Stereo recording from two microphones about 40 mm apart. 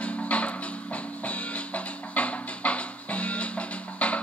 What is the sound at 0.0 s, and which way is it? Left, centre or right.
Music, left.